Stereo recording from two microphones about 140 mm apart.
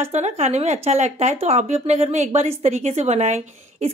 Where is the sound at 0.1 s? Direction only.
55° right (ahead or behind).